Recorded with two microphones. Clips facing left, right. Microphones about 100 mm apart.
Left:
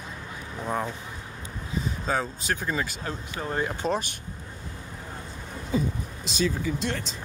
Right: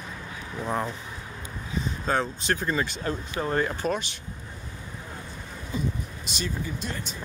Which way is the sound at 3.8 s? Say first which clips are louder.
Left 4 dB; 25° left (ahead or behind).